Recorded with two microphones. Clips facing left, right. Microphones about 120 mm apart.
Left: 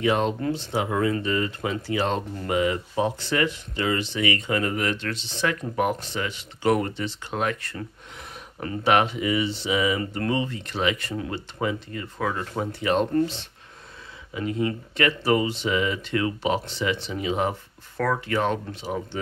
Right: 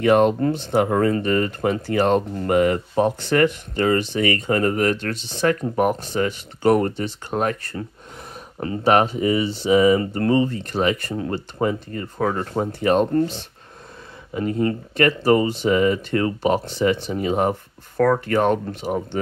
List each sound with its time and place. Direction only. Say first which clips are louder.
0.0 s speech: right 7 dB; 55° right (ahead or behind)